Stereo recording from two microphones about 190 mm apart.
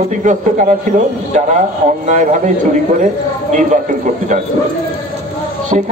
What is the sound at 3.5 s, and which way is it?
Speech, 40° right (ahead or behind).